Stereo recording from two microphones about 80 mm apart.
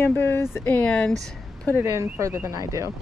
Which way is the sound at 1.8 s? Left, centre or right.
Right.